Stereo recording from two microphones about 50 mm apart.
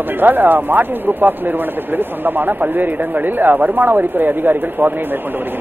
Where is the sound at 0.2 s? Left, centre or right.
Right.